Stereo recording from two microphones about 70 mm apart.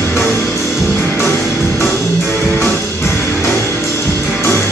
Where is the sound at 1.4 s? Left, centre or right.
Centre.